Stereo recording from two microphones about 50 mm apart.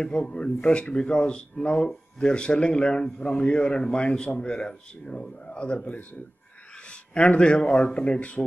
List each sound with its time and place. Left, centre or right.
0.0 s speech: centre